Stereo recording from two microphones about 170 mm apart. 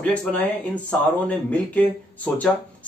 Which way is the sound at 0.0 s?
5° left (ahead or behind).